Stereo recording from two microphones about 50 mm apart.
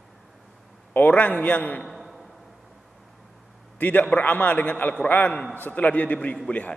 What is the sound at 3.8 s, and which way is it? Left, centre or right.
A man's voice, left.